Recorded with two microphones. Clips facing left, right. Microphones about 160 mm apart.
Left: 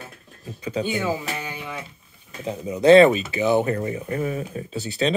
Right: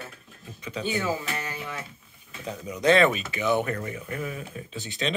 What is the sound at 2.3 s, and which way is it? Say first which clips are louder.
Speech: left 6 dB; 30° left (ahead or behind).